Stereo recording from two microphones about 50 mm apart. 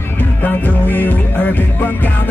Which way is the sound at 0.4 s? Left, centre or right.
Left.